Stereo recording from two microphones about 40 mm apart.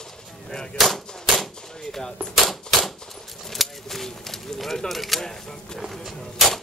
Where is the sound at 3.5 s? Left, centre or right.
Centre.